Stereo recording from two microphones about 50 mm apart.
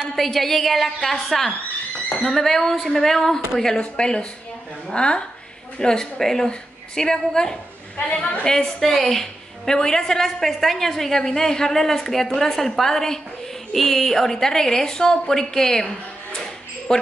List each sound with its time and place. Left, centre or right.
0.1 s a woman's voice: centre
8.1 s a woman's voice: left
8.5 s a woman's voice: centre
16.9 s a woman's voice: centre